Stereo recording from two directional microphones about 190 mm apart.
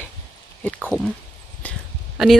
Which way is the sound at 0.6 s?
5° left (ahead or behind).